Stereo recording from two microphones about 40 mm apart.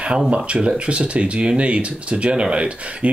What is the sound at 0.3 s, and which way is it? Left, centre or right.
Speech, right.